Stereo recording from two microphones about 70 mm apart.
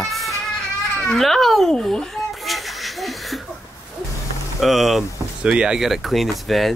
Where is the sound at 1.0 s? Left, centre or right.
Centre.